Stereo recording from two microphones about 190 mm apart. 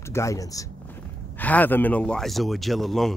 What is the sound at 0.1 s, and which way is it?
Speech, 15° left (ahead or behind).